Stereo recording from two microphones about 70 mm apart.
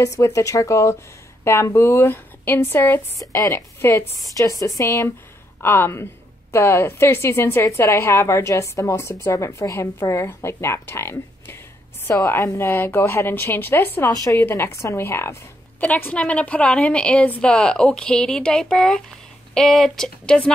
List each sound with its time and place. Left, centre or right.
0.0 s a woman's voice: left
3.2 s speech: left
3.5 s a woman's voice: left
4.4 s a woman's voice: left
12.1 s a woman's voice: left
14.1 s speech: left
14.5 s a woman's voice: left
15.8 s a woman's voice: left; by 20.3 s centre